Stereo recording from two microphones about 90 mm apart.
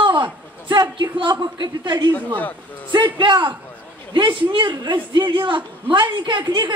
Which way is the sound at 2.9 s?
60° right (ahead or behind).